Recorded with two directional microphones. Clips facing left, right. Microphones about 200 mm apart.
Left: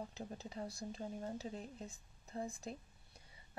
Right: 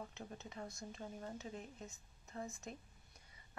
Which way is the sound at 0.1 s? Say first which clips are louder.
Left 3 dB; 35° left (ahead or behind).